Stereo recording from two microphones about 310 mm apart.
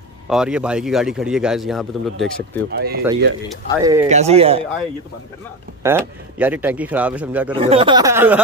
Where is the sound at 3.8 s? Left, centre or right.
Centre.